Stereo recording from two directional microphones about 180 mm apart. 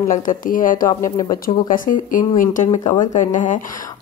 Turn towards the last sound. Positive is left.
turn(degrees=45)  # may be behind; listen again after turning